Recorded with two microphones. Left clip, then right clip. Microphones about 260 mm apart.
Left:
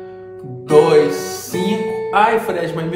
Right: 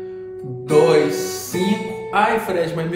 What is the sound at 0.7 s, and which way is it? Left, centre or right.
A man's voice, centre.